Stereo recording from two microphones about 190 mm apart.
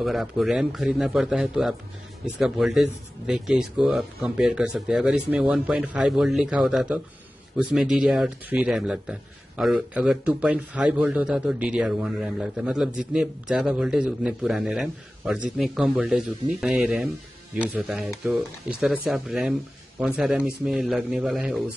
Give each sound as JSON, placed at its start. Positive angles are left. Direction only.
{"t": 0.0, "sound": "a man's voice", "side_deg": 0}